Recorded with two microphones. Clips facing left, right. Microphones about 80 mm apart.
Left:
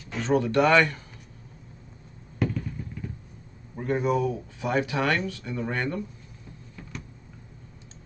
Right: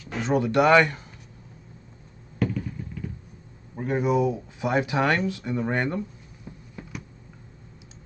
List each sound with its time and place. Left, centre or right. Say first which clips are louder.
0.1 s speech: even; centre
2.3 s fireworks: right 1 dB; centre
3.7 s speech: right 2 dB; centre